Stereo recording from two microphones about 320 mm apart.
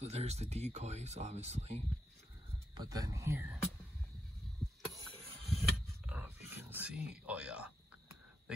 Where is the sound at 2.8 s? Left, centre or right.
Centre.